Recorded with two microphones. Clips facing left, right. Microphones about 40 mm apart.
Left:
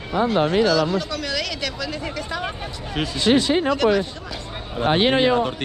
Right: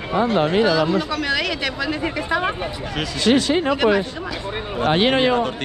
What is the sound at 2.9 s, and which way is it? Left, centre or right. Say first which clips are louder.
Speech: even; right.